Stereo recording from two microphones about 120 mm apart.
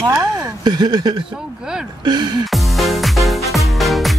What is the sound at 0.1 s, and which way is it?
Speech, 30° right (ahead or behind).